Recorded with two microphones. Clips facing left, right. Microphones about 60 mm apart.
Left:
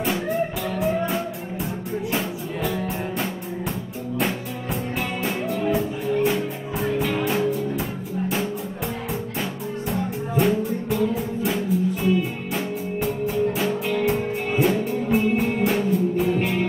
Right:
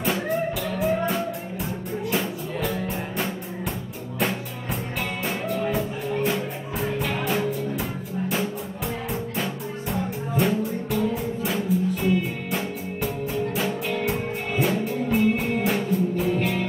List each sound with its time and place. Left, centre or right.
0.7 s music: centre
5.2 s music: centre
9.4 s music: centre